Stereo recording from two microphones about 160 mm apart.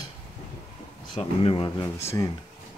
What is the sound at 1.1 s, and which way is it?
Speech, 35° left (ahead or behind).